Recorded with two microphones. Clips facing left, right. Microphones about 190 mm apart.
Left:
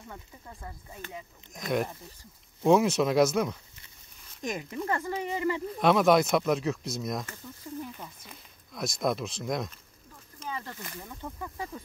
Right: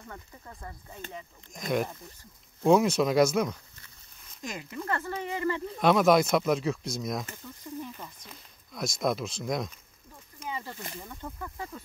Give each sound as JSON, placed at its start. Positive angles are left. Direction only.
{"t": 0.1, "sound": "speech", "side_deg": 5}
{"t": 4.4, "sound": "speech", "side_deg": 20}
{"t": 5.8, "sound": "speech", "side_deg": 0}
{"t": 10.4, "sound": "speech", "side_deg": -10}
{"t": 11.0, "sound": "speech", "side_deg": 5}
{"t": 11.3, "sound": "speech", "side_deg": 15}